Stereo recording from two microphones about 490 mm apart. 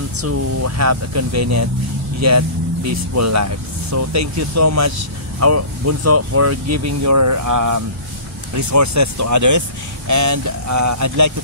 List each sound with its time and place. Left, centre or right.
0.2 s speech: right